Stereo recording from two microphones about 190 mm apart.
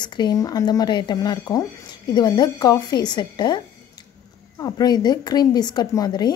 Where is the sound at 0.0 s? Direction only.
20° left (ahead or behind).